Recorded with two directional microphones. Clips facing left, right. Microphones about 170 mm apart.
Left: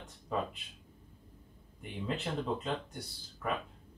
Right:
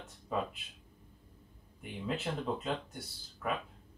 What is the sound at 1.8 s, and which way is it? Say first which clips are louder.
Speech: even; 5° right (ahead or behind).